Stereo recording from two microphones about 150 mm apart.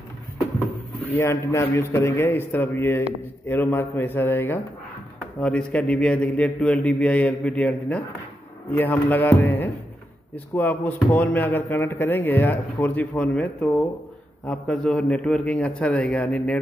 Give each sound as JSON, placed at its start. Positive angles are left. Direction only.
{"t": 1.1, "sound": "a man's voice", "side_deg": 15}